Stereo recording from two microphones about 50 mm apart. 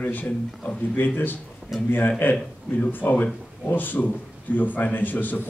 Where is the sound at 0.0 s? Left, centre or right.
Left.